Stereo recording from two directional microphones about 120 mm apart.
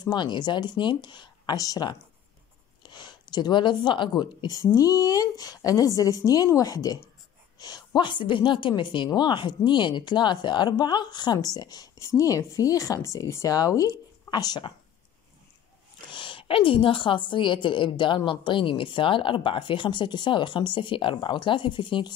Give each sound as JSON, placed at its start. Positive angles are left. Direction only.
{"t": 0.0, "sound": "a woman's voice", "side_deg": 40}
{"t": 16.1, "sound": "a woman's voice", "side_deg": 45}